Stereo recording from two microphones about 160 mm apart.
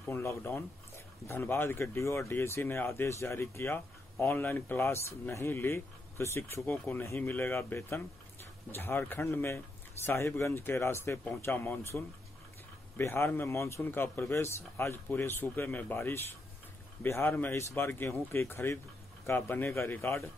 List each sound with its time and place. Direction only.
0.1 s speech: 15° left (ahead or behind)